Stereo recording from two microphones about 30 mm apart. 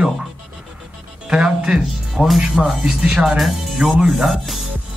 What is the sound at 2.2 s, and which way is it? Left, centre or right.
Speech, centre.